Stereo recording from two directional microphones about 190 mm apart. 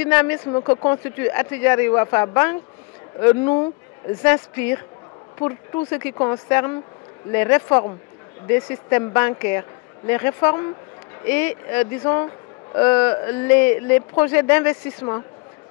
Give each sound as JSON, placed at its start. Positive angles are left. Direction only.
{"t": 0.0, "sound": "speech", "side_deg": 10}
{"t": 0.5, "sound": "speech", "side_deg": 20}